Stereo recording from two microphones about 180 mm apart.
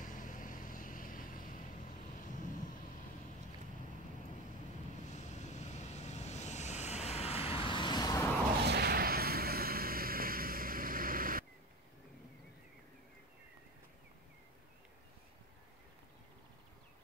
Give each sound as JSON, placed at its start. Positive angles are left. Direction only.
{"t": 0.0, "sound": "vehicle", "side_deg": 45}
{"t": 5.0, "sound": "vehicle", "side_deg": 40}
{"t": 8.6, "sound": "a sound", "side_deg": -60}